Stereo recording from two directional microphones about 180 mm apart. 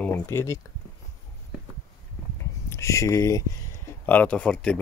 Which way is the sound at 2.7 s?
15° left (ahead or behind).